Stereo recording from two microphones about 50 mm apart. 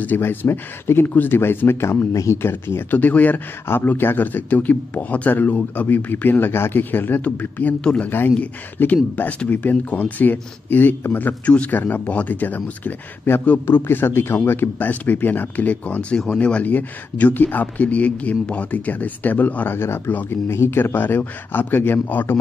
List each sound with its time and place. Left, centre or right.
0.2 s speech: left
3.6 s speech: left
8.7 s speech: left
11.4 s speech: left
16.6 s speech: left